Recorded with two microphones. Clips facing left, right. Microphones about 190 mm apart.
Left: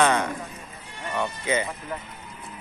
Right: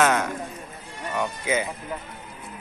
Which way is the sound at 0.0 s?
5° right (ahead or behind).